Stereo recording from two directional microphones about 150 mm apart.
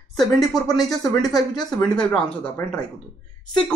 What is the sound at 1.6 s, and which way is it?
Speech, 5° left (ahead or behind).